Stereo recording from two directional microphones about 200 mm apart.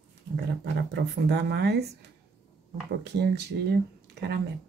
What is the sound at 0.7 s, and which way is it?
Speech, 55° right (ahead or behind).